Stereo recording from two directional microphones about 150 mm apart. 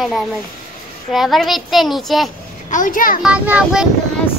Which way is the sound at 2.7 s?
60° left (ahead or behind).